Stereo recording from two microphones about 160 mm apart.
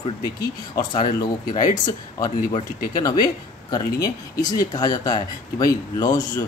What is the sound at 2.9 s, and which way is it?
Speech, 25° left (ahead or behind).